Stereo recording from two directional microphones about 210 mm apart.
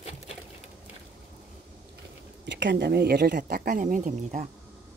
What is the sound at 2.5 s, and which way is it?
A woman's voice, 55° right (ahead or behind).